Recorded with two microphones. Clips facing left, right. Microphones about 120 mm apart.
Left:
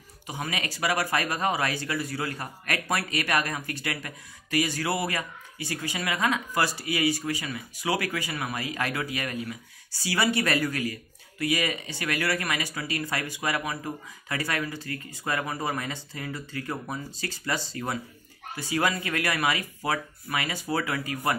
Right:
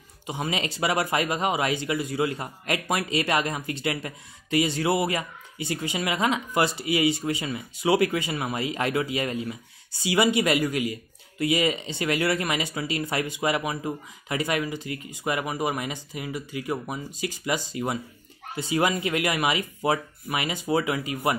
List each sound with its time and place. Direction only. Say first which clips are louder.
0.3 s speech: right 4 dB; 25° right (ahead or behind)